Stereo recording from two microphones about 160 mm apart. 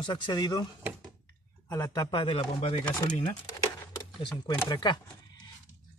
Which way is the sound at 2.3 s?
45° left (ahead or behind).